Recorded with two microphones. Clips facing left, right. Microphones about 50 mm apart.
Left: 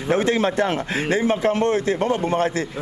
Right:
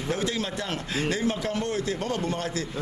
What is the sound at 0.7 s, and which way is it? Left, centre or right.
A man's voice, left.